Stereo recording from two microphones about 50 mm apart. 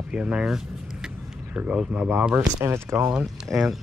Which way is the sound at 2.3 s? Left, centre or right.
Right.